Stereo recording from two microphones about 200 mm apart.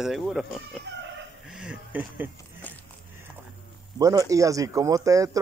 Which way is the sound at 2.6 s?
10° left (ahead or behind).